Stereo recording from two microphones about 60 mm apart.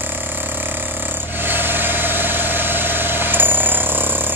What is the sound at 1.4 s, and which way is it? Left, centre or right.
Vehicle, right.